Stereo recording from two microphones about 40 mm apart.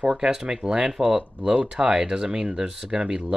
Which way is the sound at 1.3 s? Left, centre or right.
Right.